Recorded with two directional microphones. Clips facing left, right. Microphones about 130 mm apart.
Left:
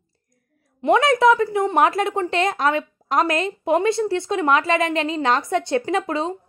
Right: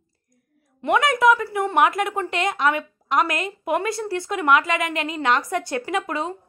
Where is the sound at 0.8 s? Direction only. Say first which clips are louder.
Left 2 dB; 25° left (ahead or behind).